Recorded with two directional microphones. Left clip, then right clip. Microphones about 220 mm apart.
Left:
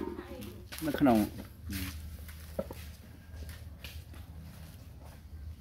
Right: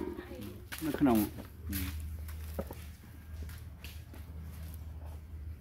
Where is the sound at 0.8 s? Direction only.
30° left (ahead or behind).